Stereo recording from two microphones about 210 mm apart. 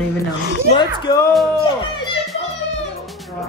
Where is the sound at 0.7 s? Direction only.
20° left (ahead or behind).